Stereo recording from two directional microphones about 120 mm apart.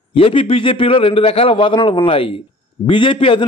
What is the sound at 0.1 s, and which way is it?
A man's voice, 50° left (ahead or behind).